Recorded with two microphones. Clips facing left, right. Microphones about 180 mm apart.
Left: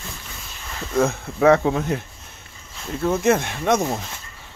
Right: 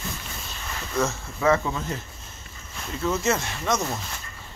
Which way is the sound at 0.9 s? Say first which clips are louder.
Left 7 dB; 60° left (ahead or behind).